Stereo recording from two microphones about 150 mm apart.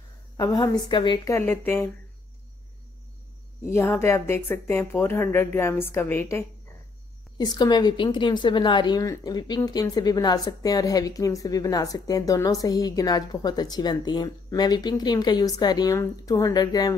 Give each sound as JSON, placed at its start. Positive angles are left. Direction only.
{"t": 0.4, "sound": "a woman's voice", "side_deg": 25}
{"t": 1.3, "sound": "speech", "side_deg": 15}
{"t": 3.7, "sound": "speech", "side_deg": 15}
{"t": 7.3, "sound": "a woman's voice", "side_deg": 30}